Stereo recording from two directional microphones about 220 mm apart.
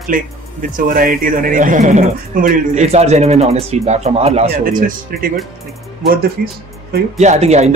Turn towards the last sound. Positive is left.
turn(degrees=-30)  # may be behind; listen again after turning